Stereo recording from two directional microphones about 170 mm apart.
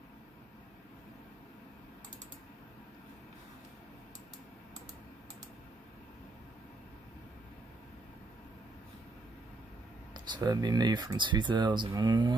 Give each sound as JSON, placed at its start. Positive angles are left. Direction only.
{"t": 10.1, "sound": "speech", "side_deg": -25}